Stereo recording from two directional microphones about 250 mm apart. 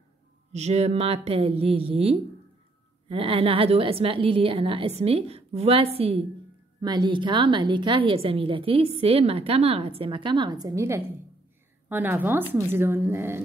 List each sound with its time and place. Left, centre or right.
0.5 s a woman's voice: right; by 13.4 s centre